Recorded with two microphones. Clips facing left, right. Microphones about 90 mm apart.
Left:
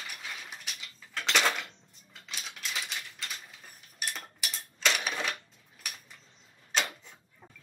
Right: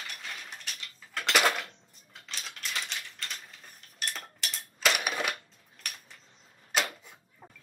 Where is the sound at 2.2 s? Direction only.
Centre (ahead or behind).